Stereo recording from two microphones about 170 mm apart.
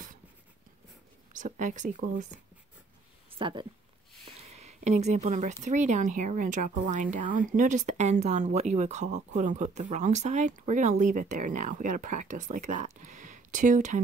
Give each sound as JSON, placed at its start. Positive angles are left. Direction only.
{"t": 1.3, "sound": "speech", "side_deg": -50}
{"t": 3.3, "sound": "speech", "side_deg": -30}